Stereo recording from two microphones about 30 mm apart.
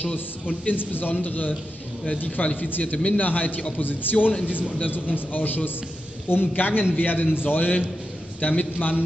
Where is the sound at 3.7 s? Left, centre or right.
Left.